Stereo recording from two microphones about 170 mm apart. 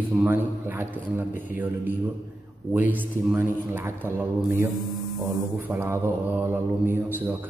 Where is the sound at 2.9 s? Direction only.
10° right (ahead or behind).